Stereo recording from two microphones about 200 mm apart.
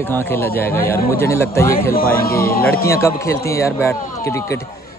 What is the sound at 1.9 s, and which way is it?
Speech, 45° left (ahead or behind).